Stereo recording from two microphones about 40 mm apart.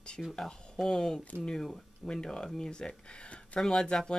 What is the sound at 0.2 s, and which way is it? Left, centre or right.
Speech, centre.